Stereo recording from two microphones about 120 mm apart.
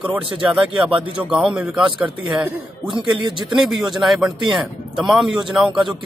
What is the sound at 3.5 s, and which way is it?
Speech, 5° right (ahead or behind).